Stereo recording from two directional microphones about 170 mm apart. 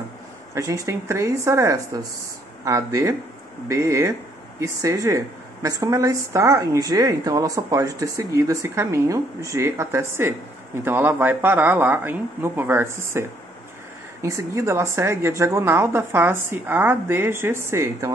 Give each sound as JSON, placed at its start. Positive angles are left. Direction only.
{"t": 0.6, "sound": "a woman's voice", "side_deg": -20}